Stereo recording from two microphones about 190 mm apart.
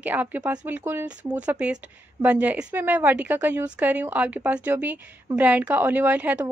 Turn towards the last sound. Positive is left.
turn(degrees=-5)  # may be behind; listen again after turning